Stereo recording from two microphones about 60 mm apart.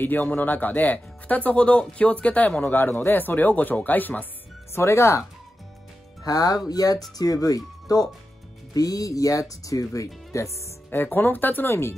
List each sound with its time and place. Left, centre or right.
0.0 s speech: left
4.7 s speech: left
6.2 s speech: left
10.9 s speech: left